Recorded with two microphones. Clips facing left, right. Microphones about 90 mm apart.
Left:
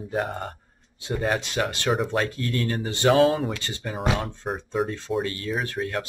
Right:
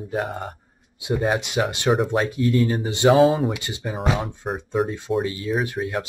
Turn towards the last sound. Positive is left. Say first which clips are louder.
# right 3 dB
turn(degrees=-15)  # may be behind; listen again after turning